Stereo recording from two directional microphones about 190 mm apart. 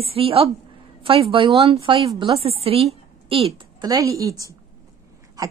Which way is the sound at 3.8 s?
20° right (ahead or behind).